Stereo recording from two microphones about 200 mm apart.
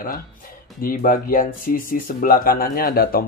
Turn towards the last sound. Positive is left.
turn(degrees=50)  # may be behind; listen again after turning